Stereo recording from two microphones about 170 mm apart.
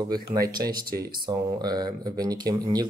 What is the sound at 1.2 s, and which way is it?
Speech, 25° right (ahead or behind).